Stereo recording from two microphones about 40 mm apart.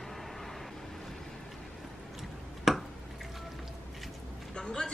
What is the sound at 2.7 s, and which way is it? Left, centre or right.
Drip, centre.